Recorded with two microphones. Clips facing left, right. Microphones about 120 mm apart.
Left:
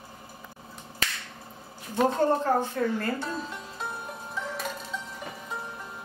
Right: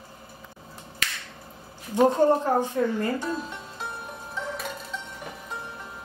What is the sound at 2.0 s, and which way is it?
Speech, 15° right (ahead or behind).